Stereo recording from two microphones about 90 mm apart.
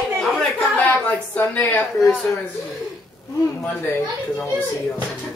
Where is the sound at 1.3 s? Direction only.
20° left (ahead or behind).